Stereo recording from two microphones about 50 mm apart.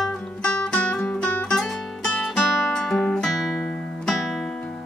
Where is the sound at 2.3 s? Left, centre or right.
Centre.